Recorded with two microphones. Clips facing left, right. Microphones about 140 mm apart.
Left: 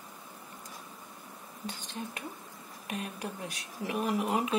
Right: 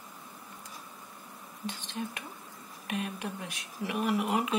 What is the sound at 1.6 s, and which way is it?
Speech, 40° left (ahead or behind).